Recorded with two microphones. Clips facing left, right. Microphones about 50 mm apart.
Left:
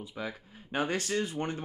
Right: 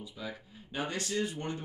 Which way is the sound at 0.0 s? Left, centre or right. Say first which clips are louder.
Left 3 dB; left.